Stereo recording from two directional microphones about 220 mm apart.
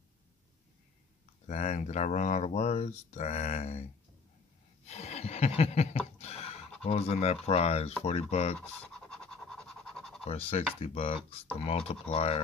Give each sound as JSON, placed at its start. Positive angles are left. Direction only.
{"t": 1.5, "sound": "speech", "side_deg": 30}
{"t": 4.8, "sound": "a sound", "side_deg": 30}
{"t": 6.8, "sound": "speech", "side_deg": 30}
{"t": 8.5, "sound": "pant", "side_deg": 5}
{"t": 10.2, "sound": "speech", "side_deg": 25}